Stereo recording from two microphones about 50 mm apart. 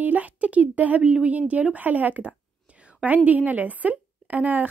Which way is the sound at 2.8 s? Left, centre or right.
Right.